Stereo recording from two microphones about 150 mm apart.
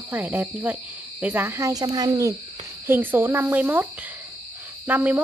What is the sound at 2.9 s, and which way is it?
Speech, 15° right (ahead or behind).